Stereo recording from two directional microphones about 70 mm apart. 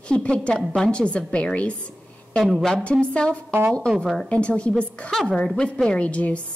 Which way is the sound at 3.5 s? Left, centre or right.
Right.